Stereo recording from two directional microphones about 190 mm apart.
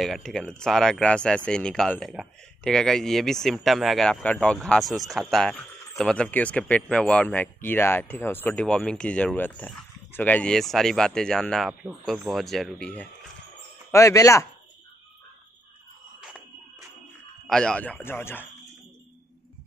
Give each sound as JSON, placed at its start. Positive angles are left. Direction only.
{"t": 0.0, "sound": "speech", "side_deg": 5}
{"t": 16.2, "sound": "music", "side_deg": 0}
{"t": 17.5, "sound": "speech", "side_deg": 5}